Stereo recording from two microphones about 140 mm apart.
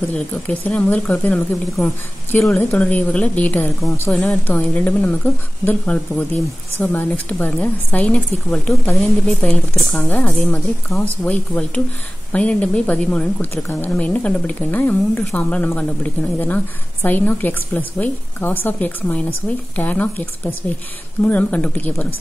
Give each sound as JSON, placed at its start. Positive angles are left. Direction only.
{"t": 0.1, "sound": "a woman's voice", "side_deg": 10}